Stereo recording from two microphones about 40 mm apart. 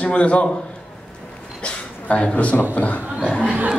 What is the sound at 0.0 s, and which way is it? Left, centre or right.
Speech, left.